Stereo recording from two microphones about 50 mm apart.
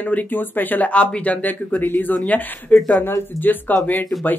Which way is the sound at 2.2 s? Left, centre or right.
Left.